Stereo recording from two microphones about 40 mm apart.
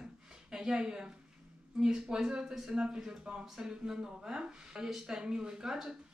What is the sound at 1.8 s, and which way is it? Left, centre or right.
Speech, centre.